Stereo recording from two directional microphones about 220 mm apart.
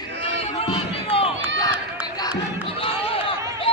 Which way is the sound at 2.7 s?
25° left (ahead or behind).